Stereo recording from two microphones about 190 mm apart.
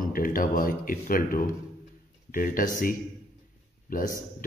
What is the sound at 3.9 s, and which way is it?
Speech, 45° left (ahead or behind).